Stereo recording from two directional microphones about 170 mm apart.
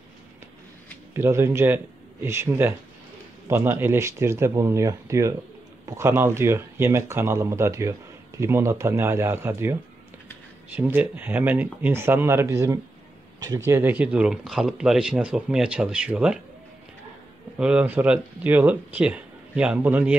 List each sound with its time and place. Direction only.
1.1 s speech: 15° right (ahead or behind)
17.6 s speech: 5° right (ahead or behind)